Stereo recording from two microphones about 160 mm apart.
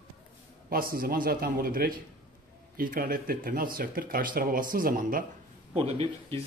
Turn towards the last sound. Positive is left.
turn(degrees=-40)  # may be behind; listen again after turning